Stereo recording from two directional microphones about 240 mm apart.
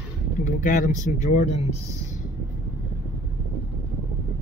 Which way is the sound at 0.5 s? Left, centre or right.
Left.